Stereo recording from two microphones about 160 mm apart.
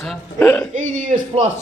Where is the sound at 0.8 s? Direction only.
55° right (ahead or behind).